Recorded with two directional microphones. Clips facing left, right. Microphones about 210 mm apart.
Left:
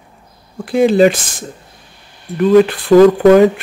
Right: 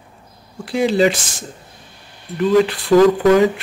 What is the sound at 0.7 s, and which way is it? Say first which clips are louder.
Speech: left 5 dB; 50° left (ahead or behind).